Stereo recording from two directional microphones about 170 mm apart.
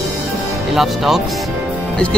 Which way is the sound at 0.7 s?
Centre (ahead or behind).